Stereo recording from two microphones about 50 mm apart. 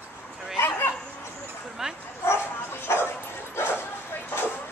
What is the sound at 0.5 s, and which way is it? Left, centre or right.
Speech, left.